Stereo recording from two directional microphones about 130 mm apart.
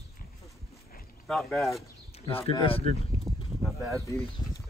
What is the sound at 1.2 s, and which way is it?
Speech, 5° left (ahead or behind).